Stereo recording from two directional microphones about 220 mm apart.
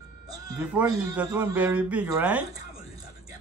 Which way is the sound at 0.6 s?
5° right (ahead or behind).